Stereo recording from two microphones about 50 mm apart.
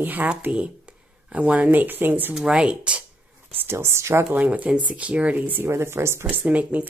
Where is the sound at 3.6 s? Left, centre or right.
Right.